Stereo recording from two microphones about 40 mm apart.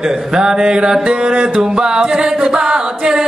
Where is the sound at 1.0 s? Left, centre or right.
Right.